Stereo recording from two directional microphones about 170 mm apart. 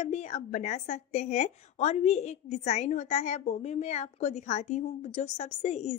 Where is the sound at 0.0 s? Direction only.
40° left (ahead or behind).